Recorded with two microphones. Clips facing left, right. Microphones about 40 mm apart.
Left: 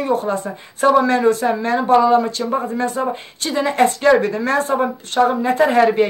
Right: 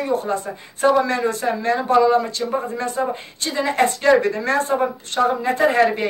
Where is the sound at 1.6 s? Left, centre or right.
Left.